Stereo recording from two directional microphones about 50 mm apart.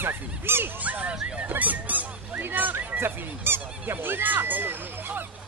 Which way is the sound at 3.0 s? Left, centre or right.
Right.